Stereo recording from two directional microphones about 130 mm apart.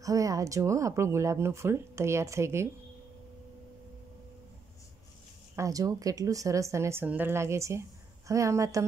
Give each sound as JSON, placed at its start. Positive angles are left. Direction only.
{"t": 0.0, "sound": "speech", "side_deg": -25}
{"t": 5.6, "sound": "speech", "side_deg": -25}